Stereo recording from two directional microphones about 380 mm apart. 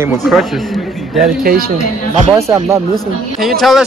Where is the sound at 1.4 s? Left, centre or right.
Right.